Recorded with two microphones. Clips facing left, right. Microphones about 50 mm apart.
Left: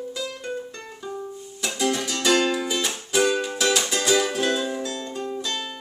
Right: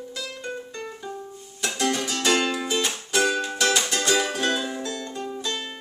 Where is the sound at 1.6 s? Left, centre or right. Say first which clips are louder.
Even; centre.